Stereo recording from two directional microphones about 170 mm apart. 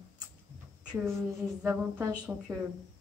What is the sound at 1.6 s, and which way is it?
Speech, 10° right (ahead or behind).